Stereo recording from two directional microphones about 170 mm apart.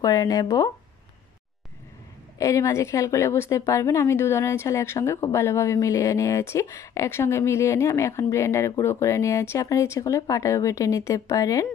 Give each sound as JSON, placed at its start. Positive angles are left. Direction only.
{"t": 0.0, "sound": "speech", "side_deg": 20}
{"t": 2.3, "sound": "a woman's voice", "side_deg": 20}